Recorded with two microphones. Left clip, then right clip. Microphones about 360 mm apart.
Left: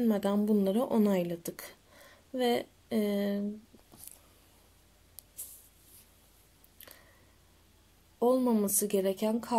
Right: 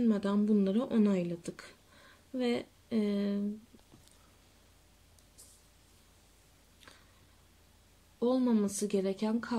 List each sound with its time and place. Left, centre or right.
0.0 s speech: centre
8.2 s speech: centre